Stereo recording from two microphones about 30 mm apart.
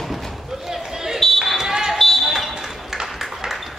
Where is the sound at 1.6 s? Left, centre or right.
Centre.